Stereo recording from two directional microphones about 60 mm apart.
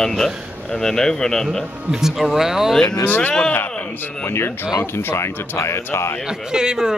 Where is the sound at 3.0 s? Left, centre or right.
Left.